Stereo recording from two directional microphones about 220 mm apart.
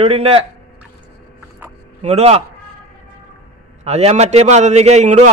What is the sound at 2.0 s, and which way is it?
Speech, 30° right (ahead or behind).